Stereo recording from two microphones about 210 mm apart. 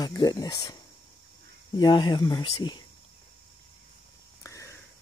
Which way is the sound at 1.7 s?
20° left (ahead or behind).